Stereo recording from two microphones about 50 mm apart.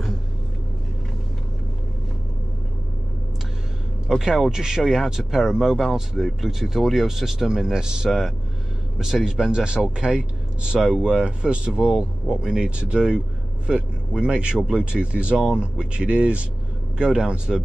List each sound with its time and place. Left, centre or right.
4.1 s speech: centre
9.5 s speech: centre
10.8 s speech: centre
11.1 s speech: centre